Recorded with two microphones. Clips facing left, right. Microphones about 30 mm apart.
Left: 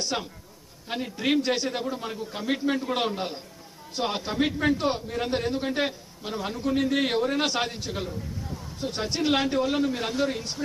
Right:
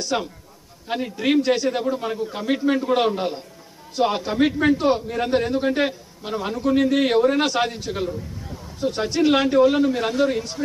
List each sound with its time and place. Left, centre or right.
0.1 s a man's voice: centre
4.5 s a man's voice: centre
4.7 s a man's voice: centre